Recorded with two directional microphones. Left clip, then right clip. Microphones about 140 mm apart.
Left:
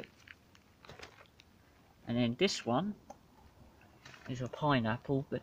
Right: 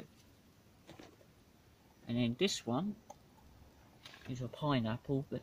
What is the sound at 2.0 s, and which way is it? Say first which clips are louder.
Speech: left 3 dB; 30° right (ahead or behind).